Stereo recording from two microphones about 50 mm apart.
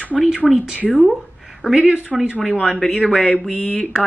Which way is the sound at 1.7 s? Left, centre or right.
Centre.